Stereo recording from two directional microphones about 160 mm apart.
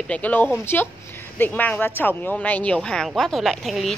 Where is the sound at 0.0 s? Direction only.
10° left (ahead or behind).